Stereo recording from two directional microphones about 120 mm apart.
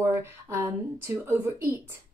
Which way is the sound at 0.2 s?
25° right (ahead or behind).